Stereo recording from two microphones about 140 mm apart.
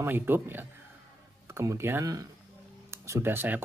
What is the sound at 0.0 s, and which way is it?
A man's voice, 15° right (ahead or behind).